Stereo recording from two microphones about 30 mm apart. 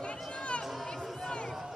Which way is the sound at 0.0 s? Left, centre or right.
Left.